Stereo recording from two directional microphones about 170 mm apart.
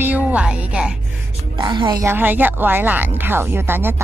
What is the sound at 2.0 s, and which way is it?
Speech, 15° right (ahead or behind).